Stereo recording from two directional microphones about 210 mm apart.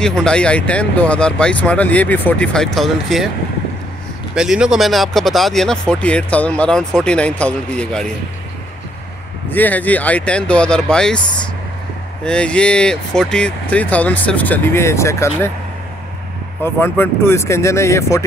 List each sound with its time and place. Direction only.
0.0 s speech: 5° left (ahead or behind)
4.4 s speech: 5° right (ahead or behind)
9.5 s speech: 10° left (ahead or behind)
12.3 s speech: 5° left (ahead or behind)
16.6 s speech: 10° left (ahead or behind)